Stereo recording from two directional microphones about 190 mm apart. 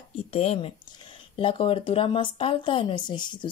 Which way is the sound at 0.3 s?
30° left (ahead or behind).